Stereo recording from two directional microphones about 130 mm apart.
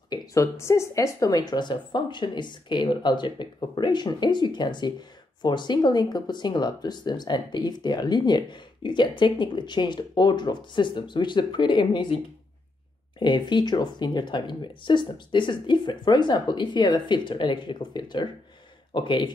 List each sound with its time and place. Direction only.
0.1 s speech: 25° left (ahead or behind)
13.2 s speech: 35° left (ahead or behind)